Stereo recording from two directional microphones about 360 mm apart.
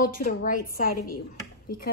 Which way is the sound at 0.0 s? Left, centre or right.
Left.